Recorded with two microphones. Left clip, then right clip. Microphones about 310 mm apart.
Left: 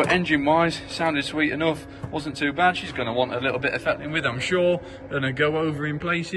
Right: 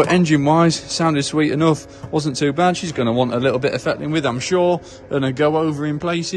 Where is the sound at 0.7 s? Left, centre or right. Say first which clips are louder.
Right 5 dB; right.